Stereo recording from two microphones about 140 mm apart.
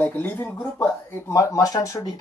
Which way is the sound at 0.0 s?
15° left (ahead or behind).